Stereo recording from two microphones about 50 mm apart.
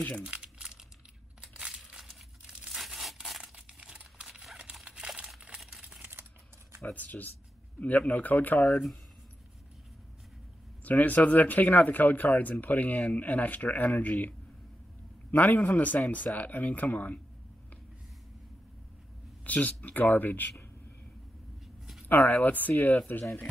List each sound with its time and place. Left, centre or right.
0.3 s crumpling: right
1.4 s crushing: right
1.7 s crumpling: centre
2.7 s crushing: centre
3.2 s tearing: centre
3.5 s crumpling: right
5.7 s a sound: centre
6.9 s speech: left
10.8 s speech: left
15.3 s speech: left
19.4 s speech: left
22.0 s speech: left